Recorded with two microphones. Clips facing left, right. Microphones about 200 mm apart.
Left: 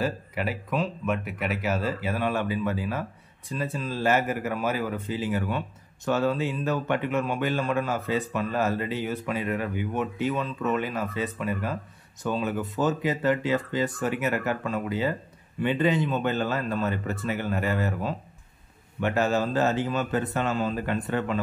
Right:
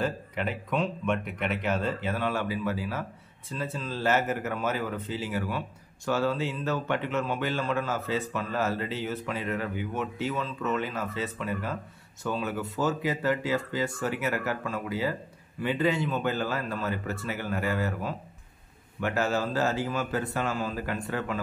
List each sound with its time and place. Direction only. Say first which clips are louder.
0.0 s a man's voice: left 2 dB; 10° left (ahead or behind)